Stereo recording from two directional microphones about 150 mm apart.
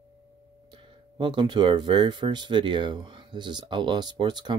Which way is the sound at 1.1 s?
30° right (ahead or behind).